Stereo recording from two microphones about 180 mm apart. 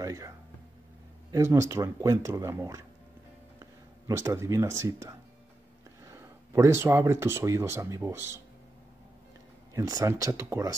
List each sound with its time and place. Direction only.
0.0 s speech: 15° right (ahead or behind)
1.3 s speech: 15° right (ahead or behind)
4.1 s speech: 15° right (ahead or behind)
9.8 s speech: 20° right (ahead or behind)